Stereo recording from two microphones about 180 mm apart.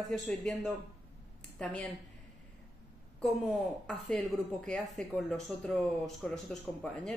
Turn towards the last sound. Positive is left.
turn(degrees=5)  # may be behind; listen again after turning